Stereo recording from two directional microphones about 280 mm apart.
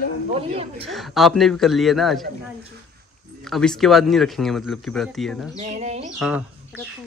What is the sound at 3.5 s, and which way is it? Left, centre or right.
Speech, centre.